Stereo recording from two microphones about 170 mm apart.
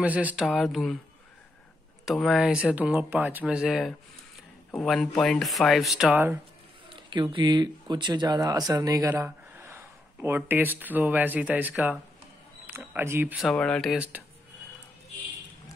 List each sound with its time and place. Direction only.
0.0 s speech: 10° right (ahead or behind)
2.0 s speech: centre (ahead or behind)
6.1 s speech: 10° right (ahead or behind)
6.9 s a sound: 30° right (ahead or behind)
7.3 s speech: 25° right (ahead or behind); by 13.5 s 10° right (ahead or behind)
13.5 s speech: 5° left (ahead or behind)